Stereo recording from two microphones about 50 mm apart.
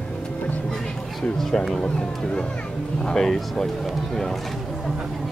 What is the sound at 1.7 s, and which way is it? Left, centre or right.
A man's voice, centre.